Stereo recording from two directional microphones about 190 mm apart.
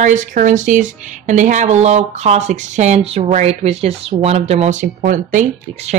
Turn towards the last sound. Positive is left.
turn(degrees=-40)  # may be behind; listen again after turning